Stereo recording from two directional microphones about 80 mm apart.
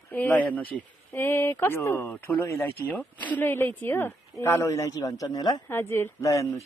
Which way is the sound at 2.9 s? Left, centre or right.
Left.